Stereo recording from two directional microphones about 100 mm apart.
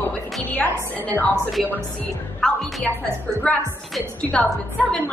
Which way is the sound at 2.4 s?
5° left (ahead or behind).